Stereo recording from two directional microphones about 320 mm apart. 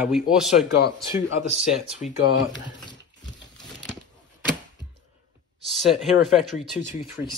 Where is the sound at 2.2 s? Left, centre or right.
Left.